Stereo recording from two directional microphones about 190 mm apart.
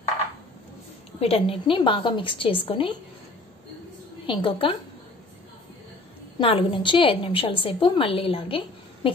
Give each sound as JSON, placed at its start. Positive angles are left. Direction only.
{"t": 1.2, "sound": "a woman's voice", "side_deg": 30}
{"t": 4.3, "sound": "a woman's voice", "side_deg": 30}
{"t": 6.3, "sound": "a woman's voice", "side_deg": 30}